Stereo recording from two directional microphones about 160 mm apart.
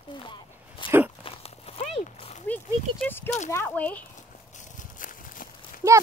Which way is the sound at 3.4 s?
15° left (ahead or behind).